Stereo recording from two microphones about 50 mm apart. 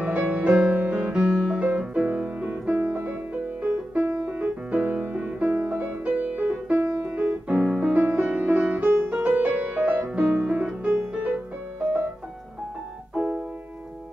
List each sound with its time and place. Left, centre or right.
0.0 s music: right
7.2 s piano: right
8.1 s music: centre
8.7 s music: right; by 11.0 s centre
11.1 s music: right
13.1 s music: right